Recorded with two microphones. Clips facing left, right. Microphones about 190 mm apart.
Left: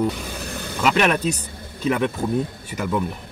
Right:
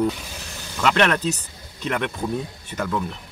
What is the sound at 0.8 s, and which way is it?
Speech, 10° left (ahead or behind).